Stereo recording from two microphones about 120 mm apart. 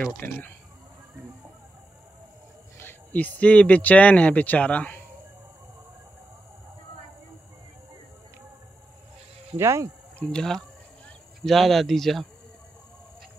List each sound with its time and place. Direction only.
0.2 s speech: 20° left (ahead or behind)
2.8 s speech: 15° left (ahead or behind)
9.6 s speech: 25° right (ahead or behind)
10.1 s speech: 5° left (ahead or behind)